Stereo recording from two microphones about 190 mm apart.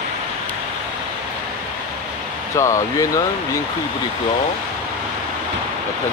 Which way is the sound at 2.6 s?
15° left (ahead or behind).